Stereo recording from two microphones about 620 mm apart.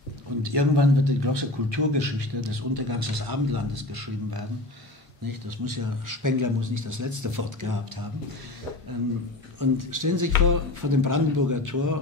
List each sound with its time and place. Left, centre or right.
0.4 s a man's voice: right
9.6 s speech: right